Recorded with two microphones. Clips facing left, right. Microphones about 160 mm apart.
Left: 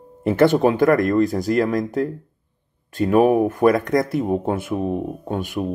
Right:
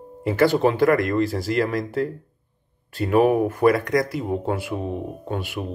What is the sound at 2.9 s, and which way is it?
Speech, 45° left (ahead or behind).